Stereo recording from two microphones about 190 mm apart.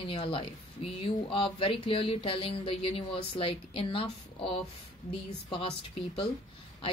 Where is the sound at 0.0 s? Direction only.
25° left (ahead or behind).